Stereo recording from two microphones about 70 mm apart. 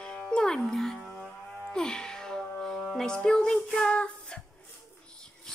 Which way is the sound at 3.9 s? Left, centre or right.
Centre.